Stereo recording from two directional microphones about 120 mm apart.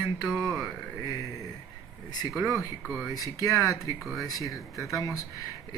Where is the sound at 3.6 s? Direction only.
25° left (ahead or behind).